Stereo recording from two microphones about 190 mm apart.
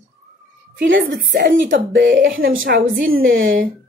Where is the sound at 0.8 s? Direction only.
75° right (ahead or behind).